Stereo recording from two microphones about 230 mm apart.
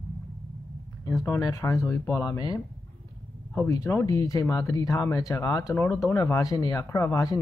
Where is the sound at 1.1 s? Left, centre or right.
Centre.